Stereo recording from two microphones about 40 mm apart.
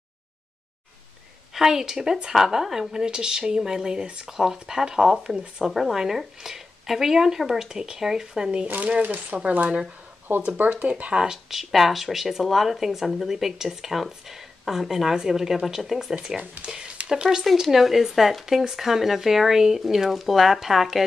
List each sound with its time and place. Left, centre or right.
1.5 s speech: centre
4.3 s speech: centre
5.7 s speech: centre; by 8.6 s right
9.0 s speech: right
10.3 s speech: right
10.7 s speech: right
11.1 s speech: centre
11.5 s speech: centre
16.3 s speech: right; by 21.0 s centre